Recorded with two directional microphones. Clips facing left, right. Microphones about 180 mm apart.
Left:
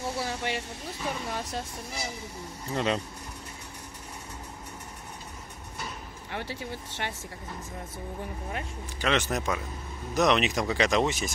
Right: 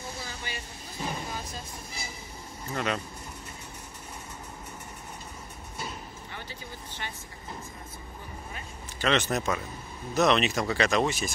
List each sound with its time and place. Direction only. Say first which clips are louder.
0.0 s vehicle: left 8 dB; 75° left (ahead or behind)
2.7 s speech: left 3 dB; 25° left (ahead or behind)
6.3 s speech: left 10 dB; 75° left (ahead or behind)
9.0 s speech: right 1 dB; 10° left (ahead or behind)